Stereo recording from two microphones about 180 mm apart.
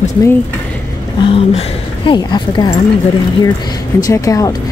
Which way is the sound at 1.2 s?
30° left (ahead or behind).